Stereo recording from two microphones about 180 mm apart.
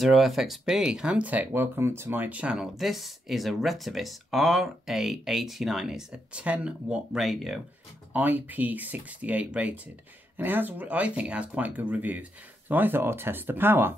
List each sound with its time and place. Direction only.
0.0 s speech: centre (ahead or behind)